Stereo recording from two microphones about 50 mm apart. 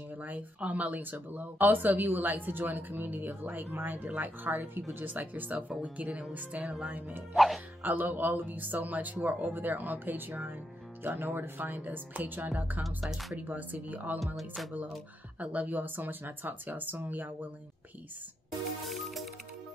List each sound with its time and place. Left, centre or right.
0.2 s speech: right
6.6 s speech: centre
6.9 s speech: right
7.3 s music: centre
7.8 s speech: right
12.8 s music: centre
13.5 s speech: right
14.2 s music: centre
15.3 s speech: right
18.9 s music: centre